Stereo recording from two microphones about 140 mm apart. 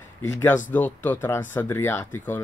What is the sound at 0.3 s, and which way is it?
Speech, 15° left (ahead or behind).